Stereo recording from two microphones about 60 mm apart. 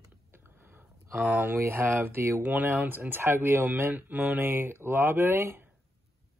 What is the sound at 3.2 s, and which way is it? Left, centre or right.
Speech, right.